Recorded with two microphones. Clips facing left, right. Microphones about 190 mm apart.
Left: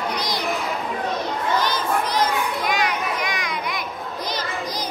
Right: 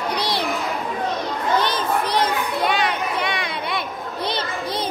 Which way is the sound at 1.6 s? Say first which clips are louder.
Right 1 dB; 30° right (ahead or behind).